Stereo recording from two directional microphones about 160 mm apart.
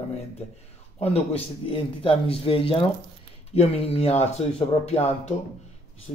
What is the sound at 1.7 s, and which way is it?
Speech, 35° left (ahead or behind).